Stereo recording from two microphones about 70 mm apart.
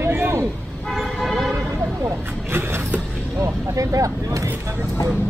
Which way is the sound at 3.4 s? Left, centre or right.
Right.